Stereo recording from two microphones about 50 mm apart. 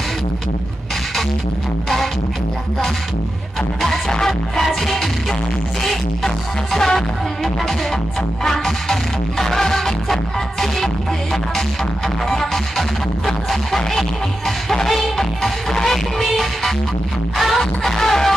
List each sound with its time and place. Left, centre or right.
4.1 s music: centre
8.5 s music: centre
12.3 s music: centre